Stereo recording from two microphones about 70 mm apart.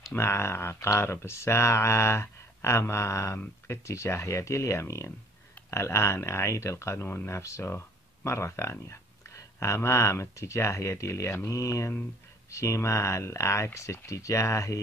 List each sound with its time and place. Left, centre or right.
0.1 s speech: left